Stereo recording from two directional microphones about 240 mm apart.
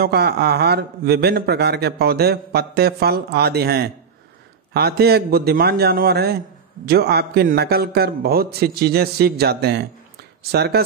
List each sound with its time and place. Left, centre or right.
0.0 s speech: right